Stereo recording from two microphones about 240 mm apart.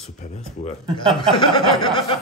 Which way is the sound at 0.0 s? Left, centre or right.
Left.